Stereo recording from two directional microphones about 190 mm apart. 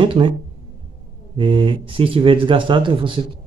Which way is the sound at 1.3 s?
25° right (ahead or behind).